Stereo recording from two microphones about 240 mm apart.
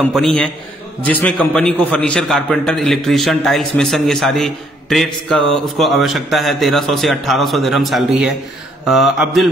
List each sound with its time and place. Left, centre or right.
0.0 s a man's voice: centre